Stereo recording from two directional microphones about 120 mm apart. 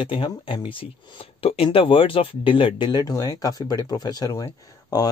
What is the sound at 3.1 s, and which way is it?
Speech, 30° left (ahead or behind).